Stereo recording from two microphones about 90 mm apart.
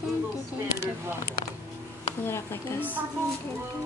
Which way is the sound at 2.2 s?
25° left (ahead or behind).